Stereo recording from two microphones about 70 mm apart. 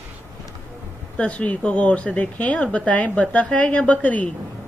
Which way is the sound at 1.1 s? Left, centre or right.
Centre.